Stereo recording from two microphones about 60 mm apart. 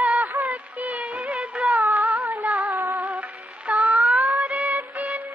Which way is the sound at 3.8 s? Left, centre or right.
Right.